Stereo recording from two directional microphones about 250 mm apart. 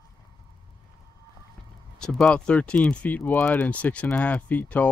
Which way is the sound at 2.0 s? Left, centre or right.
Centre.